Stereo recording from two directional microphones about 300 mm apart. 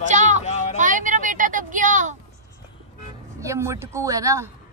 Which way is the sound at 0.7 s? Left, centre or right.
Right.